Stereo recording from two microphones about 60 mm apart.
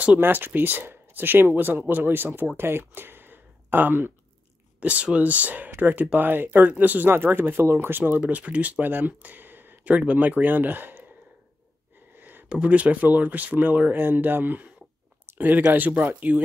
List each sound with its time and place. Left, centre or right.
0.2 s speech: right
4.7 s speech: right
7.1 s speech: right
8.2 s speech: right
12.2 s a sound: right
12.4 s speech: centre